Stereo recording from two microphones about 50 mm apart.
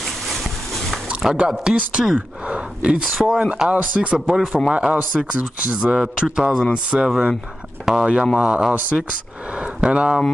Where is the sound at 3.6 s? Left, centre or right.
Right.